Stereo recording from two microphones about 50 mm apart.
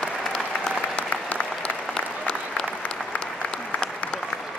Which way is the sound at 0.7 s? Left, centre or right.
Left.